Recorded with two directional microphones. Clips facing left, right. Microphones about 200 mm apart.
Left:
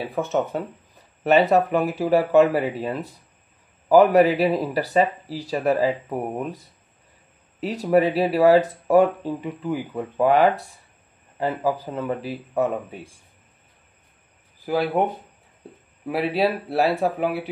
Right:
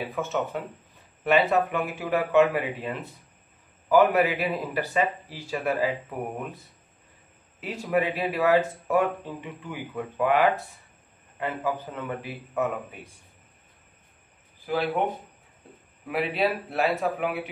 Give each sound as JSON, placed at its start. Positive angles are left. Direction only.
{"t": 0.1, "sound": "speech", "side_deg": 35}
{"t": 7.6, "sound": "speech", "side_deg": 35}
{"t": 14.7, "sound": "speech", "side_deg": 35}
{"t": 16.1, "sound": "speech", "side_deg": 35}